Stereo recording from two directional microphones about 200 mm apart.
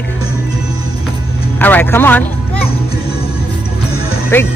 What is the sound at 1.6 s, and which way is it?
A man's voice, 10° left (ahead or behind).